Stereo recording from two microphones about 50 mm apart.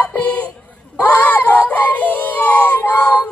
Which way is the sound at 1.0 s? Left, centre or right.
Left.